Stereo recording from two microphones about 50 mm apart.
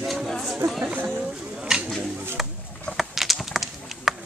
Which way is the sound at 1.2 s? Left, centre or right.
Centre.